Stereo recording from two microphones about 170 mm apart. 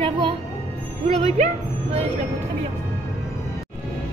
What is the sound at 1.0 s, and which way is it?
Music, 35° right (ahead or behind).